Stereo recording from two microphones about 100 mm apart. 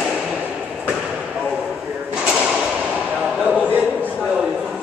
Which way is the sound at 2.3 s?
5° right (ahead or behind).